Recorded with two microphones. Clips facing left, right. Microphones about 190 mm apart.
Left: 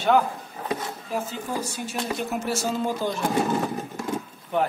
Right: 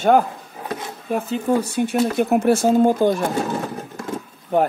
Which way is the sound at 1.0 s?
60° right (ahead or behind).